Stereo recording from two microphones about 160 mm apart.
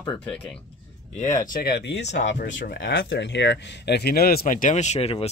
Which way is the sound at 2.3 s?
55° left (ahead or behind).